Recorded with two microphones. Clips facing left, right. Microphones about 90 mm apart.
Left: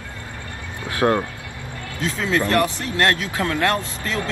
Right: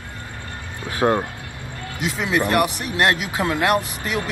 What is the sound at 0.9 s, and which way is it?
Speech, 20° right (ahead or behind).